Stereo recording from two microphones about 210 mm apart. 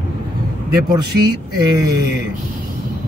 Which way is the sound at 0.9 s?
20° right (ahead or behind).